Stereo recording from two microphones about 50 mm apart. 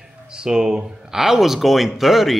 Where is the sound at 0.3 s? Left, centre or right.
Centre.